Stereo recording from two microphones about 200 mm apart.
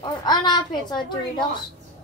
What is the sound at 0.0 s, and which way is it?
Speech, 20° left (ahead or behind).